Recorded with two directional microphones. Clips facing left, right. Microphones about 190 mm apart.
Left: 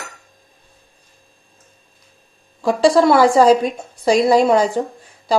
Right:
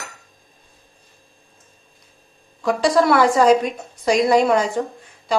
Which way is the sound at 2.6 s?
30° left (ahead or behind).